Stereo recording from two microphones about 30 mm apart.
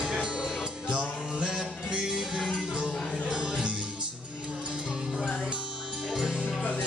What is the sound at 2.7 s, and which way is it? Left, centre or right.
Music, right.